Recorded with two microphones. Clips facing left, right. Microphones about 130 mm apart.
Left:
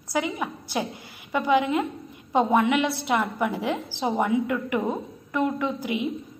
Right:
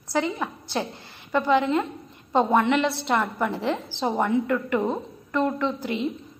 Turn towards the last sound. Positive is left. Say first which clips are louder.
# right 1 dB
turn(degrees=10)  # may be behind; listen again after turning